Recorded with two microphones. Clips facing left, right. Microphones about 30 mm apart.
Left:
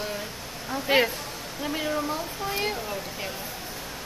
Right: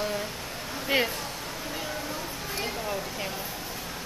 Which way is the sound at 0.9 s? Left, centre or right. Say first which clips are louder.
Left 4 dB; left.